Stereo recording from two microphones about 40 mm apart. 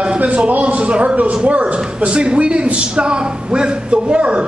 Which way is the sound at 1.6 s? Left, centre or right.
Right.